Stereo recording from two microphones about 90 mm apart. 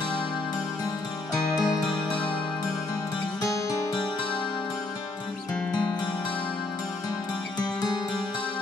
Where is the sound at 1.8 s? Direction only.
10° left (ahead or behind).